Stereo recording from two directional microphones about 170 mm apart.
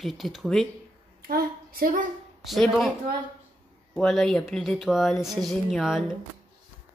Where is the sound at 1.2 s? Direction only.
60° right (ahead or behind).